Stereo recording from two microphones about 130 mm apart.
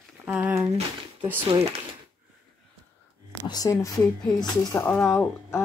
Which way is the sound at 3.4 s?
30° left (ahead or behind).